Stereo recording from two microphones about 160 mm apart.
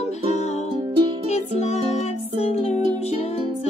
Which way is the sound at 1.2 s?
45° left (ahead or behind).